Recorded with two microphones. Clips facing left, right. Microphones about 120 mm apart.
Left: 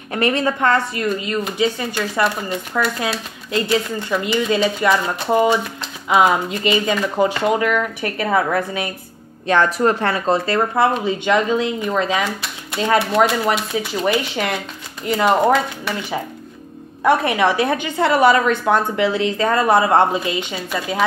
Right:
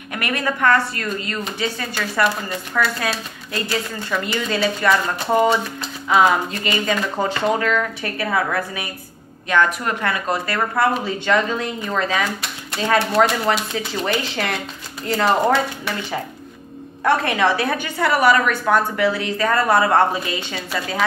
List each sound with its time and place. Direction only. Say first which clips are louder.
0.1 s a woman's voice: left 5 dB; 30° left (ahead or behind)
5.3 s a woman's voice: left 1 dB; 10° left (ahead or behind)
13.0 s speech: left 1 dB; centre (ahead or behind)
13.5 s speech: left 1 dB; 15° left (ahead or behind)
17.0 s a woman's voice: left 2 dB; 15° left (ahead or behind)